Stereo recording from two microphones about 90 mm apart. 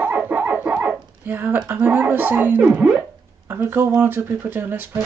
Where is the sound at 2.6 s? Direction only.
15° right (ahead or behind).